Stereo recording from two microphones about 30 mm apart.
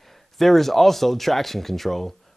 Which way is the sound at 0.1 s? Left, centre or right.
Centre.